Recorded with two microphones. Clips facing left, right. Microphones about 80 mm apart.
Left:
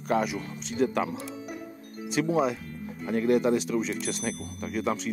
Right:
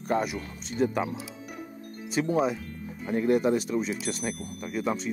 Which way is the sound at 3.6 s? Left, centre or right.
Right.